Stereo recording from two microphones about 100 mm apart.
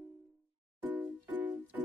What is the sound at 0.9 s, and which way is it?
Music, 20° right (ahead or behind).